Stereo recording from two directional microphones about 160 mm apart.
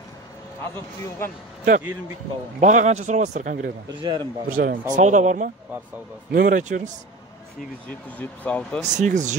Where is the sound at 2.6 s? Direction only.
50° right (ahead or behind).